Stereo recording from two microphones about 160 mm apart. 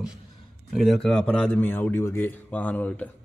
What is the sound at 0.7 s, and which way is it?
Speech, centre (ahead or behind).